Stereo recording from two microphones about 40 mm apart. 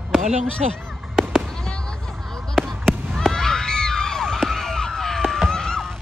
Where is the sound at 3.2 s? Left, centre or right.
Centre.